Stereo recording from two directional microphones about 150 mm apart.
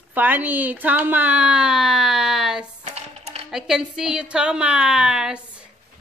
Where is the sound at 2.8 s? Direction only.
45° right (ahead or behind).